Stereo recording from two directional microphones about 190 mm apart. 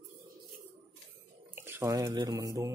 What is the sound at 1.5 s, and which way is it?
Speech, 10° right (ahead or behind).